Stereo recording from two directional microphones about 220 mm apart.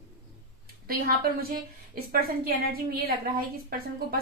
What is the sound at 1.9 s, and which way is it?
A woman's voice, 40° right (ahead or behind).